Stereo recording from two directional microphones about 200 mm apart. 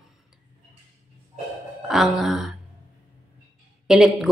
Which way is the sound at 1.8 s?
Centre (ahead or behind).